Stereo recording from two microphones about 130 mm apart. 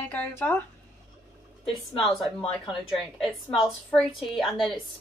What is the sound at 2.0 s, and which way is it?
A woman's voice, centre (ahead or behind).